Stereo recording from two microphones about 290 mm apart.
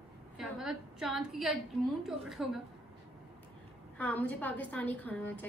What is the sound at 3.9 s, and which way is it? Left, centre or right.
A woman's voice, centre.